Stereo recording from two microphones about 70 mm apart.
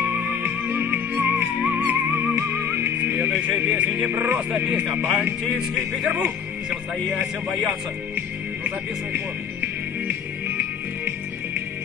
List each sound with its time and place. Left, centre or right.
0.0 s music: right
4.0 s speech: right
4.5 s speech: centre
8.6 s music: right